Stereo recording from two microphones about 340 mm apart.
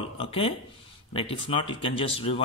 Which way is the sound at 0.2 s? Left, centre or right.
Centre.